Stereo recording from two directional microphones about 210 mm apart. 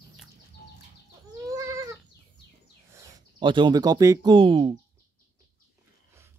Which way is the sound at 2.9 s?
15° right (ahead or behind).